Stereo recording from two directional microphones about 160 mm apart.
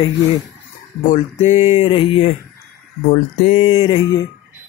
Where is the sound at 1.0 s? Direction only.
45° left (ahead or behind).